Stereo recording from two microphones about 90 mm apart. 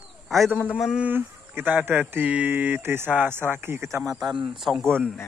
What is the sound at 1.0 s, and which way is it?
Speech, 25° right (ahead or behind).